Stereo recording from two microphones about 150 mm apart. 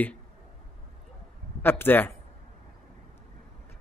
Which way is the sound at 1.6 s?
15° left (ahead or behind).